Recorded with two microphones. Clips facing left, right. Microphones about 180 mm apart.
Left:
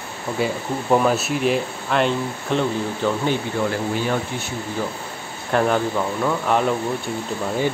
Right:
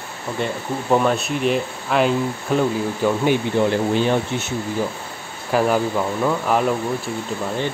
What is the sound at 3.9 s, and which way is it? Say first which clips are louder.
Speech: right 4 dB; 25° right (ahead or behind).